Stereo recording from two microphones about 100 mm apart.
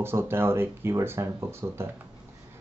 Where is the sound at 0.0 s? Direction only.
25° right (ahead or behind).